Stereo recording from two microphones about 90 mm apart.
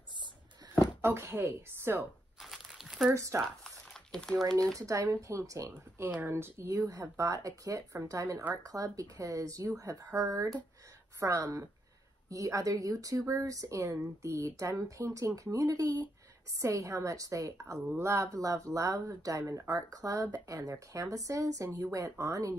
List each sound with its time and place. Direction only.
1.0 s a woman's voice: 25° right (ahead or behind)
2.4 s crumpling: centre (ahead or behind)
3.1 s a woman's voice: 30° right (ahead or behind)
3.6 s crumpling: 5° left (ahead or behind)
4.7 s a woman's voice: 35° right (ahead or behind)
6.0 s a woman's voice: 25° right (ahead or behind)